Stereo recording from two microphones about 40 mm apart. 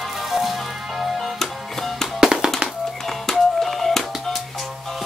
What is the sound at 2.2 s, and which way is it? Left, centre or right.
Music, centre.